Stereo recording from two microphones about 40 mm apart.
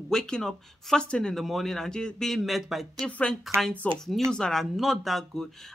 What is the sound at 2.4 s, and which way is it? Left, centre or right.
Speech, centre.